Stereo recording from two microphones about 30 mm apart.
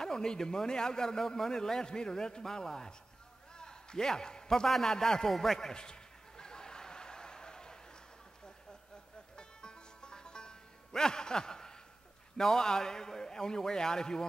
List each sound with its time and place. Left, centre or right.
0.0 s a man's voice: left
3.5 s a sound: left
4.5 s speech: centre
5.8 s chuckle: left
9.4 s music: left
12.4 s a man's voice: centre